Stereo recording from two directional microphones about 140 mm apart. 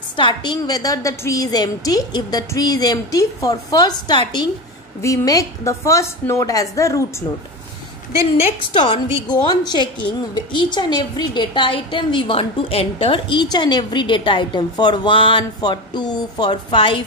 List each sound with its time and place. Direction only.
0.1 s a woman's voice: 35° left (ahead or behind)
8.4 s a woman's voice: 40° left (ahead or behind)